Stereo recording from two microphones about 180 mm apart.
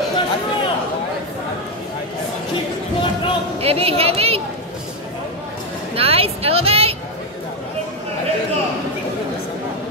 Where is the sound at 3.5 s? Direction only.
35° right (ahead or behind).